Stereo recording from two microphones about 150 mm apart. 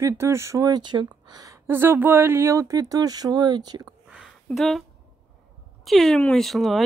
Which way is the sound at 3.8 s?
5° right (ahead or behind).